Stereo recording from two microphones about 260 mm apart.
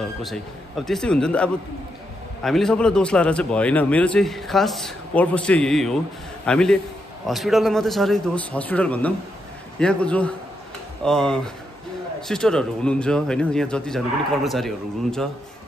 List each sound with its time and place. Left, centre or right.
0.0 s a man's voice: centre